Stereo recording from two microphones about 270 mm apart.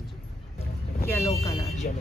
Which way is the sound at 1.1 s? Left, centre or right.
Centre.